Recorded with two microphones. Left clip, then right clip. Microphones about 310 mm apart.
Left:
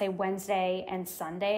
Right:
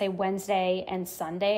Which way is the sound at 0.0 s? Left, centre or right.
Centre.